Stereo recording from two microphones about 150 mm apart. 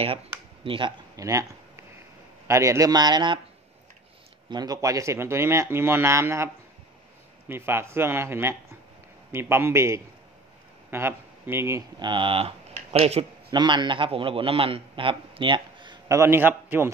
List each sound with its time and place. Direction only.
0.7 s a man's voice: 35° right (ahead or behind)
4.5 s a man's voice: 25° right (ahead or behind)
12.0 s speech: 35° right (ahead or behind)
13.5 s a man's voice: 30° right (ahead or behind)
16.2 s speech: 15° right (ahead or behind)